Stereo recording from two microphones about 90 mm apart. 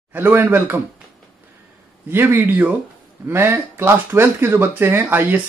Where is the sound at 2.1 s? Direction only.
25° right (ahead or behind).